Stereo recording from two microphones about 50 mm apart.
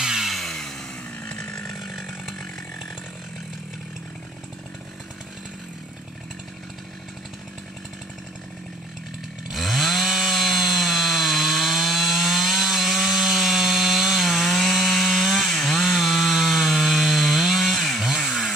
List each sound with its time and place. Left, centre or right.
0.0 s chainsaw: centre
0.3 s chainsaw: centre
1.2 s chainsaw: centre
1.8 s chainsaw: centre
9.5 s chainsaw: centre